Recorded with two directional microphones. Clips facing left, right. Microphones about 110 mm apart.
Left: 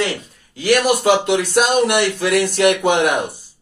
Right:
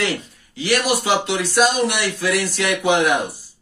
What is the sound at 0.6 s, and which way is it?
Speech, 50° left (ahead or behind).